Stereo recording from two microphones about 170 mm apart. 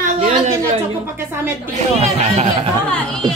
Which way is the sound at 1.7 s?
40° right (ahead or behind).